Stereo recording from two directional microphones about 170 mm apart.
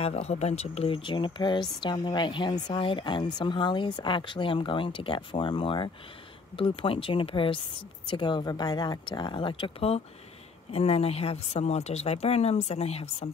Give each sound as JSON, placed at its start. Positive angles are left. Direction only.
{"t": 0.0, "sound": "speech", "side_deg": 40}